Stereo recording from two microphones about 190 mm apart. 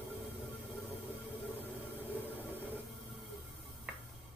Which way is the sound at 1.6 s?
10° left (ahead or behind).